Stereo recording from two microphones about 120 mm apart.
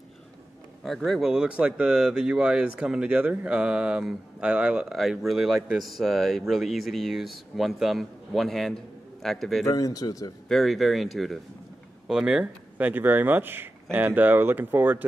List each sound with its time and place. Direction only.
0.8 s speech: centre (ahead or behind)
9.7 s speech: 30° left (ahead or behind)
10.5 s speech: centre (ahead or behind); by 15.0 s 15° right (ahead or behind)